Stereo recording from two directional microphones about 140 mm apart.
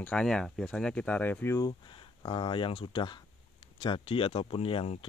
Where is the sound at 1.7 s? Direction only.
35° left (ahead or behind).